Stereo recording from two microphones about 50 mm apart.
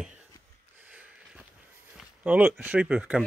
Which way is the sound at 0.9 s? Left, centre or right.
Right.